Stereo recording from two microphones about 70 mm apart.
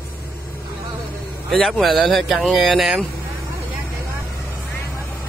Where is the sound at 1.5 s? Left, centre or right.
Centre.